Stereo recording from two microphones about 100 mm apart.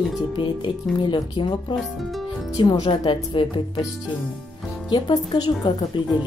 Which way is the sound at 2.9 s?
65° left (ahead or behind).